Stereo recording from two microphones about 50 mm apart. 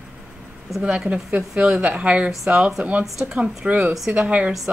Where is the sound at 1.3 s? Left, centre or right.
Right.